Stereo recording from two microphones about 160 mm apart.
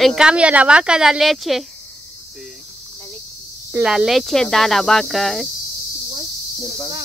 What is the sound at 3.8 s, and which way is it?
Speech, centre (ahead or behind).